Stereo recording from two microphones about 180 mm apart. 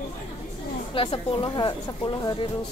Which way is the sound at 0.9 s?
30° left (ahead or behind).